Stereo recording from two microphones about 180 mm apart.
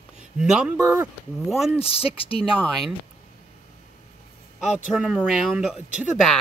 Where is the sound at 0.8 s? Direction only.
15° right (ahead or behind).